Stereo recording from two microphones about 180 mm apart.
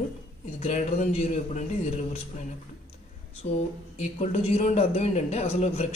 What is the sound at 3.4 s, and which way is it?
A woman's voice, 40° left (ahead or behind).